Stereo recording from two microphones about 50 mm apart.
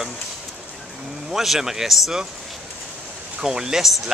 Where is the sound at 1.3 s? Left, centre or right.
Centre.